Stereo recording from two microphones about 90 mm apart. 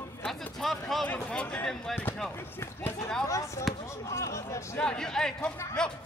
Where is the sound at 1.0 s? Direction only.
15° left (ahead or behind).